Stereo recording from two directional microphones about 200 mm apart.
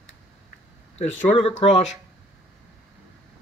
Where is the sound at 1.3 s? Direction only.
30° left (ahead or behind).